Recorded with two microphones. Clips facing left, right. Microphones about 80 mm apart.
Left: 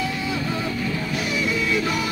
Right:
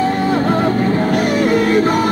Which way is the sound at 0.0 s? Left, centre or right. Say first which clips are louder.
Right 11 dB; right.